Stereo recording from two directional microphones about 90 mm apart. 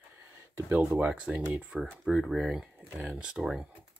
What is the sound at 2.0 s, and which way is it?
Speech, centre (ahead or behind).